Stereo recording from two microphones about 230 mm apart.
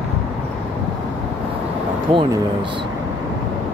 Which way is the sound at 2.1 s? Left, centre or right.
Right.